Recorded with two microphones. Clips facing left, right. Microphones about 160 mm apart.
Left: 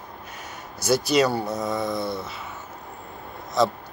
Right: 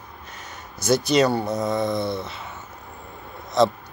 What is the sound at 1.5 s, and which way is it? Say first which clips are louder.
Speech: right 3 dB; 20° right (ahead or behind).